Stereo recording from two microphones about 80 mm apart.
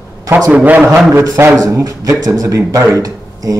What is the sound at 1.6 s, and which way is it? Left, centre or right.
A man's voice, right.